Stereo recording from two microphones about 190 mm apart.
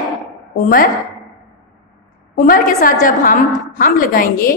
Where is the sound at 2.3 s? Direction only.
45° left (ahead or behind).